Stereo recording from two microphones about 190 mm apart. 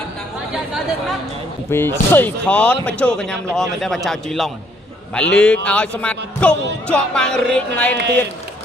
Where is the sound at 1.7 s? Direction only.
10° left (ahead or behind).